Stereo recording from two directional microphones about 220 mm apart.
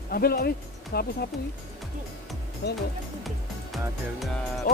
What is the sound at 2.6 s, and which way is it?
Speech, 50° left (ahead or behind).